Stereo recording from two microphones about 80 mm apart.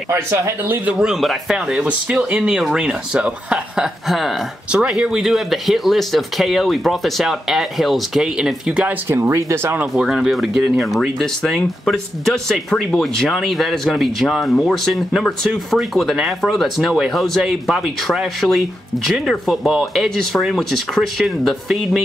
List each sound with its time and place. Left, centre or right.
0.1 s speech: right
0.8 s speech: centre
1.2 s speech: centre
1.7 s speech: centre
9.1 s speech: right
9.9 s speech: centre